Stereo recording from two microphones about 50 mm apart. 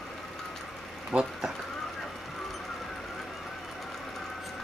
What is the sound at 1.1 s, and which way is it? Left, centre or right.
Speech, right.